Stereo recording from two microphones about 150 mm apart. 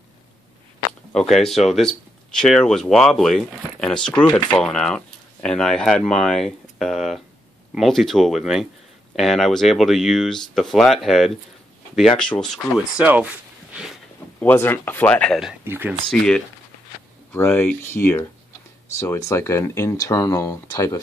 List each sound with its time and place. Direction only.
1.3 s speech: centre (ahead or behind)
14.4 s speech: 15° left (ahead or behind)
15.6 s speech: 15° right (ahead or behind)
16.1 s speech: 5° left (ahead or behind); by 21.0 s 20° left (ahead or behind)